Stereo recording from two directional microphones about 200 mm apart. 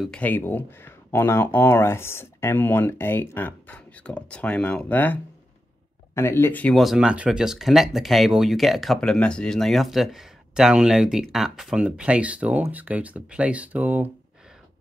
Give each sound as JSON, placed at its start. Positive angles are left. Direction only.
{"t": 0.0, "sound": "speech", "side_deg": 5}